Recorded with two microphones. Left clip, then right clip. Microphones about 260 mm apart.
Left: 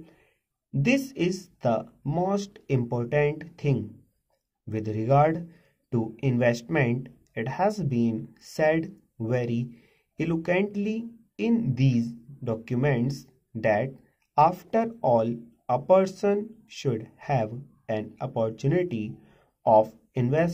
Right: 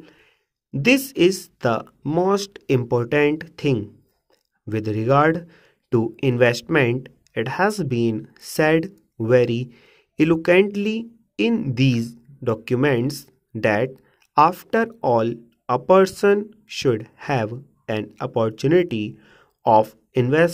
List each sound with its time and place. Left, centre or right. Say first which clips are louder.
0.8 s speech: right 9 dB; right